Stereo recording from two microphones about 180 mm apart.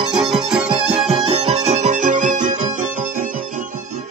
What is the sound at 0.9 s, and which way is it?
Music, 35° right (ahead or behind).